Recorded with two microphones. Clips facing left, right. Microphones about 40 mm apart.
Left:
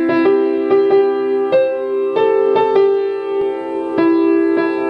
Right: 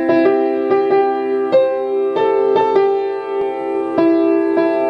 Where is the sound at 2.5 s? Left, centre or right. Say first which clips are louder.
Left 1 dB; centre.